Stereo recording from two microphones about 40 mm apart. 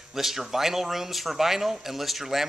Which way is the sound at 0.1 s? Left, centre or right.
Centre.